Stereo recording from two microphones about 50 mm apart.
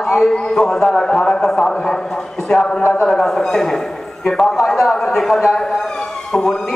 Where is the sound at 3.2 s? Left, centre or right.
Centre.